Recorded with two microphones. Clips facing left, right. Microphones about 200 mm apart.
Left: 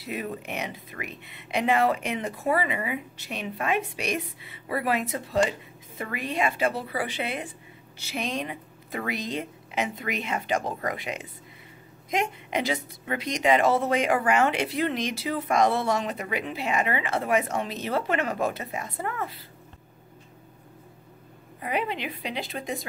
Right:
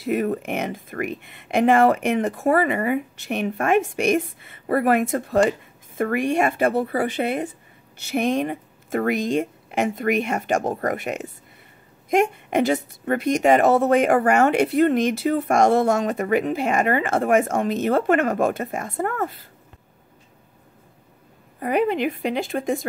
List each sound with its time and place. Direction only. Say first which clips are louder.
0.0 s a woman's voice: right 10 dB; 50° right (ahead or behind)
21.5 s a woman's voice: right 9 dB; 50° right (ahead or behind)